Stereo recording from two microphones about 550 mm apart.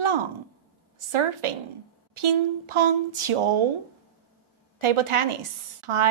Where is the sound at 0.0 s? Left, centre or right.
Right.